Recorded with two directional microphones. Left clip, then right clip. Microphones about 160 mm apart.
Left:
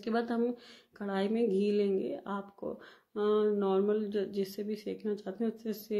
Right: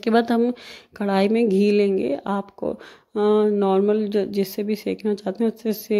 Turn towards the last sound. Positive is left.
turn(degrees=-40)  # may be behind; listen again after turning